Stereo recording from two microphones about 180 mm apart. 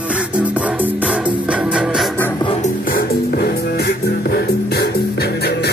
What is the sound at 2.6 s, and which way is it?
Music, 50° left (ahead or behind).